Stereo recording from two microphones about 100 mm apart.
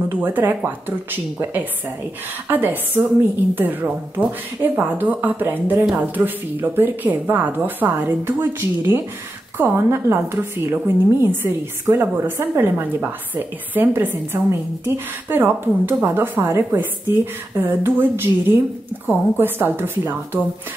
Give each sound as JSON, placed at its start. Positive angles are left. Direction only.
{"t": 0.1, "sound": "a woman's voice", "side_deg": -20}